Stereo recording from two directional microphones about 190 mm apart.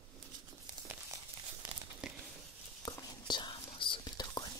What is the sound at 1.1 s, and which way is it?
Crumpling, 15° right (ahead or behind).